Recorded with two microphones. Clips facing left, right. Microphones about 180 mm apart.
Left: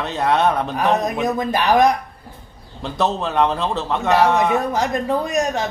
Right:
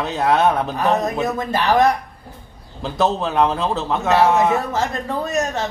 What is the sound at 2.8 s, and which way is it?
Speech, centre (ahead or behind).